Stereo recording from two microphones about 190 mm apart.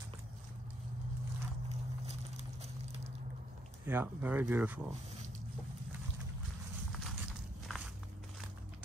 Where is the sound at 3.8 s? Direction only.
10° right (ahead or behind).